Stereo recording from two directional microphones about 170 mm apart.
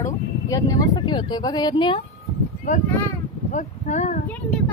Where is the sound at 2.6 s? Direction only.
50° left (ahead or behind).